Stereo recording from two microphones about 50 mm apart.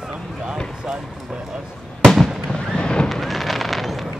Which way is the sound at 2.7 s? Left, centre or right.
Centre.